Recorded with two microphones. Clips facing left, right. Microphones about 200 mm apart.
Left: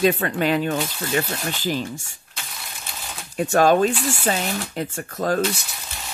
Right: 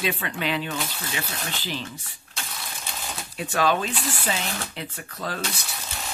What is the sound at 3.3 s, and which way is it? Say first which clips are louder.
Speech: left 7 dB; 45° left (ahead or behind).